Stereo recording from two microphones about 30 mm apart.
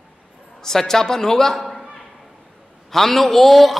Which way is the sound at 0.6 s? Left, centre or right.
Centre.